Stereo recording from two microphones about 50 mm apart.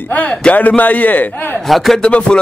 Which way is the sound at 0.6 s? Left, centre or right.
Left.